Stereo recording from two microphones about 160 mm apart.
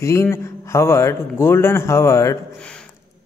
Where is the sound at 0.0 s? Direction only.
15° left (ahead or behind).